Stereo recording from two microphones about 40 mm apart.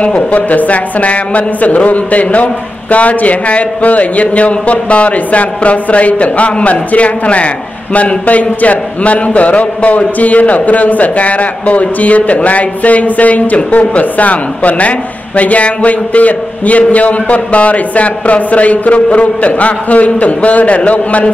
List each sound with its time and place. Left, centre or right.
0.0 s speech: left